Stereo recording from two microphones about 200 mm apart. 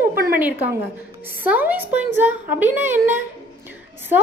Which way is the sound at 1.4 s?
10° right (ahead or behind).